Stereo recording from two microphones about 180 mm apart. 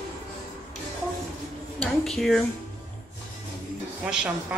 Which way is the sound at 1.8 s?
Centre (ahead or behind).